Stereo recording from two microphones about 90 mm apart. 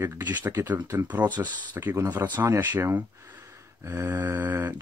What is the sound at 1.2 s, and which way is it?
Speech, 50° right (ahead or behind).